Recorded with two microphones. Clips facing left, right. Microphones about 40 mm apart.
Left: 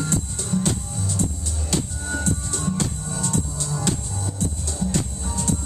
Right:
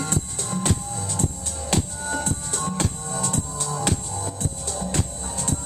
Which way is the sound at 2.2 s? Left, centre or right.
Right.